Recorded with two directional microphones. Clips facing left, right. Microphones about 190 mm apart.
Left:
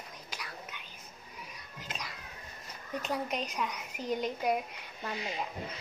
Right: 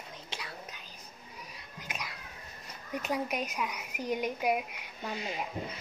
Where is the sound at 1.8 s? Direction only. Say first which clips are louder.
Right 1 dB; 10° right (ahead or behind).